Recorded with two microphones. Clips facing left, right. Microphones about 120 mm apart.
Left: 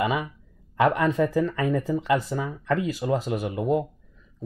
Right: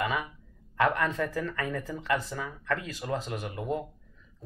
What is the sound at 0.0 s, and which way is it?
Speech, 10° left (ahead or behind).